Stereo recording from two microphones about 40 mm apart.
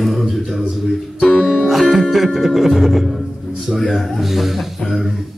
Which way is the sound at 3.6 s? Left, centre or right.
Centre.